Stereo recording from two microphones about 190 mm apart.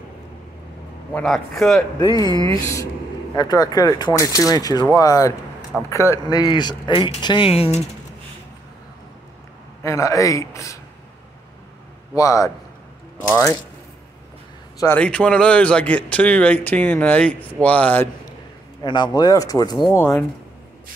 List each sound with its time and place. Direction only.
1.1 s speech: centre (ahead or behind)
2.0 s a man's voice: 20° left (ahead or behind)
9.8 s a man's voice: 15° left (ahead or behind)
12.2 s a man's voice: 15° left (ahead or behind)
14.8 s a man's voice: 10° left (ahead or behind)
18.8 s speech: 20° left (ahead or behind)